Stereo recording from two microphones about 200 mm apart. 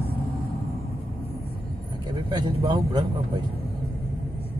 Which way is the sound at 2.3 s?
20° right (ahead or behind).